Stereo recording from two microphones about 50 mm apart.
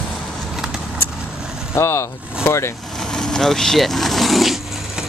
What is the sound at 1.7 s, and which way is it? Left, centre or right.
Speech, left.